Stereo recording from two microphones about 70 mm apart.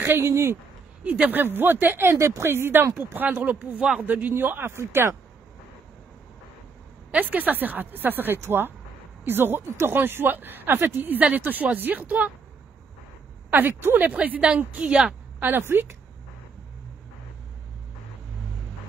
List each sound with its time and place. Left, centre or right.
0.0 s speech: right
1.0 s speech: right
3.2 s speech: right
7.1 s speech: right
13.5 s a woman's voice: right; by 15.1 s centre
15.4 s speech: right